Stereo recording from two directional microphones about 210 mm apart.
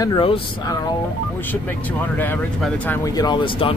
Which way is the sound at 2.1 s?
10° left (ahead or behind).